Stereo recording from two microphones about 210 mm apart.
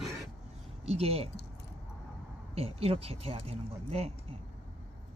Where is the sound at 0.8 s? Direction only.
30° right (ahead or behind).